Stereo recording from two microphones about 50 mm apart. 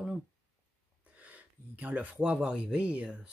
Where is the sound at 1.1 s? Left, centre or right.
Right.